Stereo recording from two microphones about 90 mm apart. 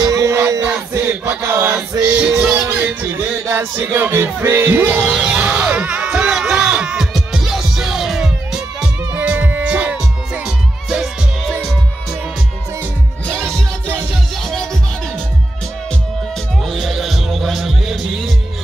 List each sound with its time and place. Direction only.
0.0 s battle cry: 35° right (ahead or behind)
1.3 s chant: 25° right (ahead or behind)
2.2 s music: 10° right (ahead or behind)
5.1 s a sound: 10° right (ahead or behind)
9.1 s music: 20° right (ahead or behind)
14.4 s music: 5° left (ahead or behind)
16.6 s music: centre (ahead or behind)